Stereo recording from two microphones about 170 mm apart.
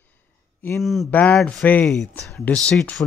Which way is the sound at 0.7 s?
Centre (ahead or behind).